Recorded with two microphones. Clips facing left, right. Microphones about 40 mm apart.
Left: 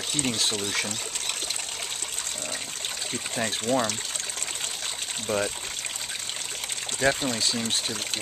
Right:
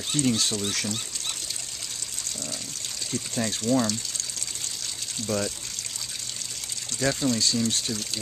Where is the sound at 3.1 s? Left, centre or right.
Left.